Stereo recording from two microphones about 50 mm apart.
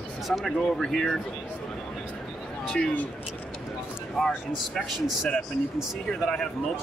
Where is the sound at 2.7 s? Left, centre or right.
Left.